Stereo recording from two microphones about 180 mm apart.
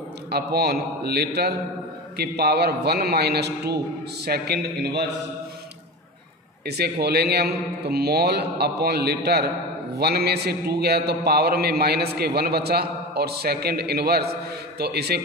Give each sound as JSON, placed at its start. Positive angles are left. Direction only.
{"t": 0.3, "sound": "a man's voice", "side_deg": -60}
{"t": 6.6, "sound": "a man's voice", "side_deg": -65}